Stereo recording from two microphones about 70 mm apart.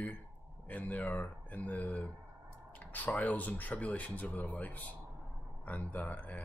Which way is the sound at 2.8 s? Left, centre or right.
Left.